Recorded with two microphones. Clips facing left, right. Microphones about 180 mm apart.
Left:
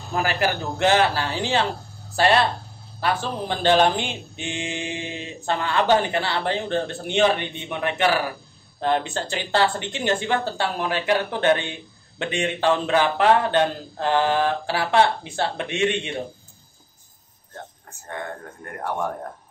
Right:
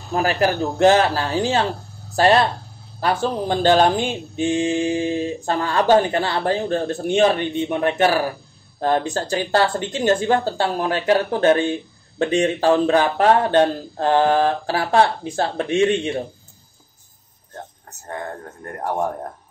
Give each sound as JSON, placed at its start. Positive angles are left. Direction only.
{"t": 0.1, "sound": "a man's voice", "side_deg": -40}
{"t": 17.8, "sound": "a man's voice", "side_deg": -35}